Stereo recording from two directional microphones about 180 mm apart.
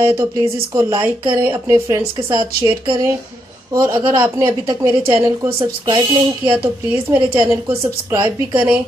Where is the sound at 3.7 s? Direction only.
25° right (ahead or behind).